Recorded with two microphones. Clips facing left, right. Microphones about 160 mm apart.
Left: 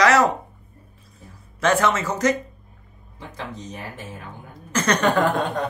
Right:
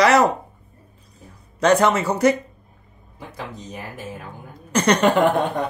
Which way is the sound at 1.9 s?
10° right (ahead or behind).